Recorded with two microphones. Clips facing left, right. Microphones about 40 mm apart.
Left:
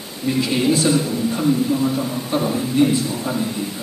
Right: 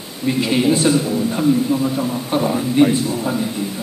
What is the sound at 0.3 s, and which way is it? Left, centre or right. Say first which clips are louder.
A man's voice: right 2 dB; centre.